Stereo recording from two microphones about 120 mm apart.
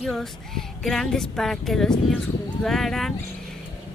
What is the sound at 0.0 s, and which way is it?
Speech, centre (ahead or behind).